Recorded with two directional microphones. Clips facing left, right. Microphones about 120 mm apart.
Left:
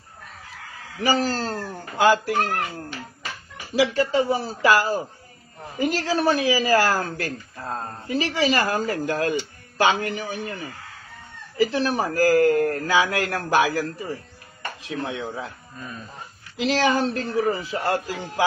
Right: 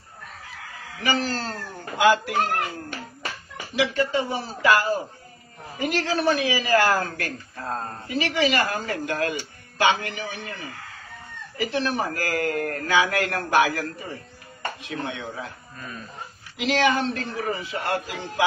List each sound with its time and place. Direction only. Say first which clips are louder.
1.0 s speech: left 3 dB; 40° left (ahead or behind)
3.7 s a man's voice: left 3 dB; 30° left (ahead or behind)
7.5 s speech: right 1 dB; 5° left (ahead or behind)
8.1 s a man's voice: left 1 dB; 35° left (ahead or behind)
11.5 s a man's voice: left 4 dB; 35° left (ahead or behind)
16.5 s a man's voice: left 1 dB; 35° left (ahead or behind)